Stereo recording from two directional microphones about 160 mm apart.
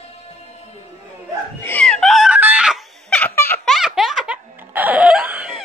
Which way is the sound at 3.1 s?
10° left (ahead or behind).